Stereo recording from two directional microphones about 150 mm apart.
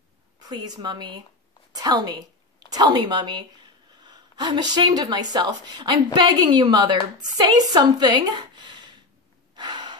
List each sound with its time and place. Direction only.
0.4 s a woman's voice: 25° right (ahead or behind)
9.6 s gasp: 30° right (ahead or behind)